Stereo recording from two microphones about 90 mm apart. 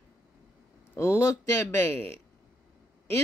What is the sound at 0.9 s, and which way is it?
Speech, 30° left (ahead or behind).